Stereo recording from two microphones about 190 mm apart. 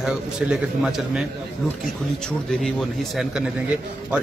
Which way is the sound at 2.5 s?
Centre (ahead or behind).